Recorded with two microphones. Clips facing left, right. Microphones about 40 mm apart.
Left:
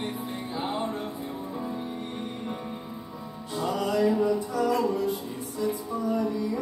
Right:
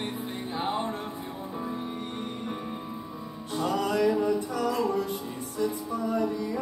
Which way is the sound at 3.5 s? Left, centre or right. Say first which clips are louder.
Even; right.